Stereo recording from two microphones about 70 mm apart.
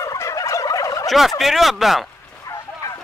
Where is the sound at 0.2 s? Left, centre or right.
Left.